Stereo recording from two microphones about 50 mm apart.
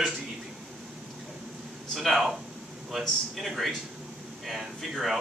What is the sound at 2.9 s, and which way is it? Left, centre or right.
Speech, centre.